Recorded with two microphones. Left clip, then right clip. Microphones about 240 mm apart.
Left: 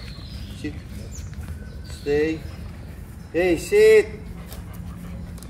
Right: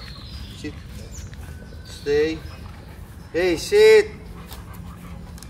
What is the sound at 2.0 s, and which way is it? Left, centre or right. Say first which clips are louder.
Speech: right 1 dB; right.